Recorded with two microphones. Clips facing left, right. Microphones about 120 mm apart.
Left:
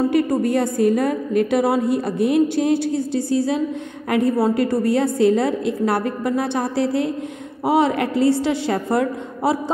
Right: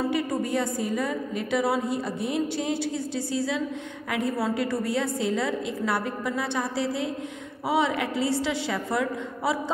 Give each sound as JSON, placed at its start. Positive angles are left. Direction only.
{"t": 0.1, "sound": "a woman's voice", "side_deg": 55}